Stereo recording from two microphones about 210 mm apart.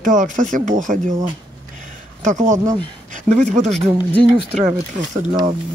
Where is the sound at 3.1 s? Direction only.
35° right (ahead or behind).